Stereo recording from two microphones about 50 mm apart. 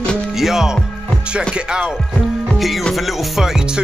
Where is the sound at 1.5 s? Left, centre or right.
Centre.